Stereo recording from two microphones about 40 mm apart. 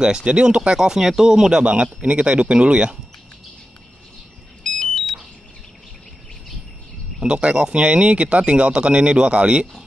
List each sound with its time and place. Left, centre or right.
0.0 s speech: right
1.6 s speech: right
4.6 s alarm: centre
7.2 s speech: right